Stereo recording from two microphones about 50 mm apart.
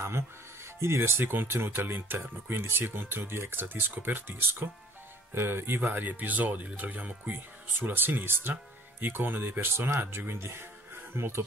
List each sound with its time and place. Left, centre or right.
0.7 s speech: right